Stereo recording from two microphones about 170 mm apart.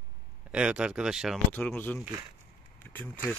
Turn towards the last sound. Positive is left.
turn(degrees=10)  # may be behind; listen again after turning